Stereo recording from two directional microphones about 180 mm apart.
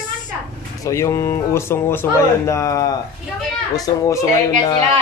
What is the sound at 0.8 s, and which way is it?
Speech, 15° left (ahead or behind).